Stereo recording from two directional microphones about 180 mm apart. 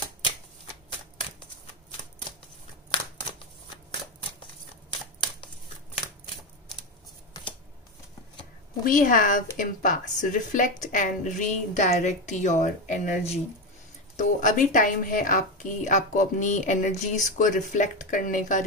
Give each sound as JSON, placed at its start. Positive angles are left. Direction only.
{"t": 8.8, "sound": "a woman's voice", "side_deg": 45}